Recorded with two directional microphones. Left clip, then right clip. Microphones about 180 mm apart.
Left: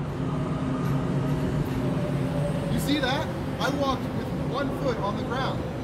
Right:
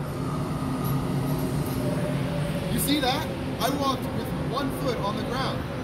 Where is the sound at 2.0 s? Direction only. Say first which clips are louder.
Right 1 dB; 50° left (ahead or behind).